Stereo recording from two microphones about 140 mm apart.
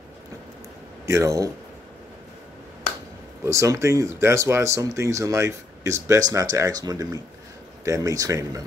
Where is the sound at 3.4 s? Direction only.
20° right (ahead or behind).